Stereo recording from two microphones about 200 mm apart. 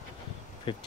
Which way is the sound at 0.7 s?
25° left (ahead or behind).